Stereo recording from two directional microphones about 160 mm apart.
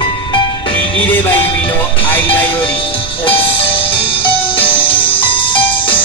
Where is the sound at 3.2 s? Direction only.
35° left (ahead or behind).